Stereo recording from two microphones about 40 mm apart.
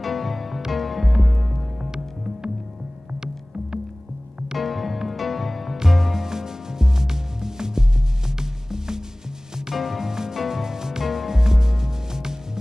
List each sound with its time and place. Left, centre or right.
0.0 s music: centre
1.8 s music: centre
4.6 s music: centre